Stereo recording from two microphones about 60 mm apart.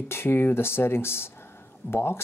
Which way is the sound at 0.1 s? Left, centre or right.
Left.